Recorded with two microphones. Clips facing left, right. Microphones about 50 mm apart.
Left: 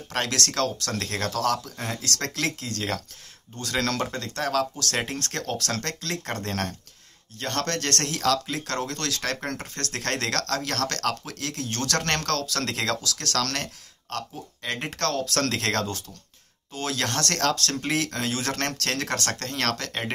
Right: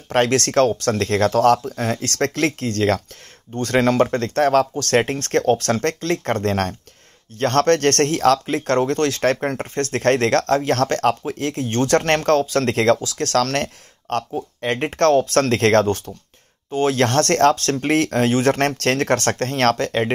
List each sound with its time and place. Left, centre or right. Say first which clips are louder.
0.1 s speech: right 11 dB; right